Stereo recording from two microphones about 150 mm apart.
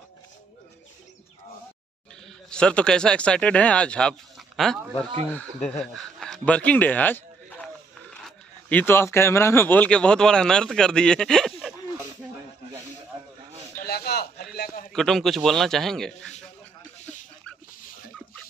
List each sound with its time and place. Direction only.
2.5 s speech: 5° left (ahead or behind)
13.8 s a sound: 90° left
14.9 s a man's voice: centre (ahead or behind)